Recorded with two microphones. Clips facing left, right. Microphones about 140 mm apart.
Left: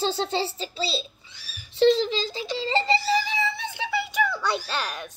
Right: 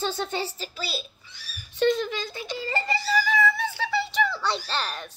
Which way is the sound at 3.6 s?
15° left (ahead or behind).